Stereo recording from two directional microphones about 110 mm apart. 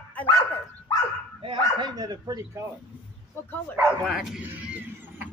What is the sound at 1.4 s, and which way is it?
Speech, 45° right (ahead or behind).